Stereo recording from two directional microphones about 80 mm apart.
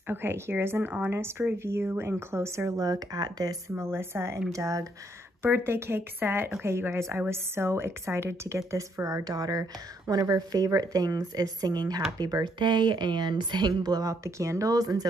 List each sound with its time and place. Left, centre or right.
0.1 s speech: right
3.7 s speech: right
4.5 s a woman's voice: right
5.4 s a woman's voice: right
14.2 s a woman's voice: right